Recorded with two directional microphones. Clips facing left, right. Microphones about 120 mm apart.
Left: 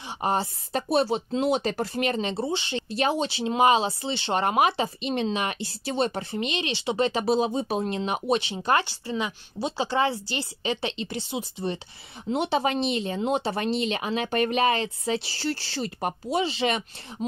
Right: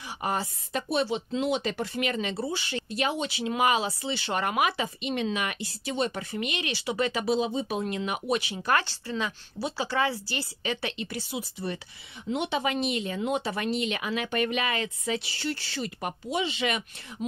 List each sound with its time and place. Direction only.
0.2 s speech: 30° left (ahead or behind)
12.3 s speech: 35° left (ahead or behind)